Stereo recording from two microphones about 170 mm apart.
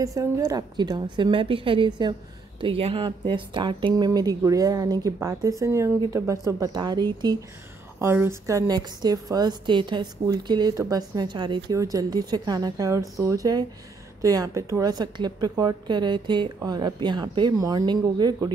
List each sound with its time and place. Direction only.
0.0 s a woman's voice: 20° right (ahead or behind)
8.0 s a woman's voice: 15° right (ahead or behind)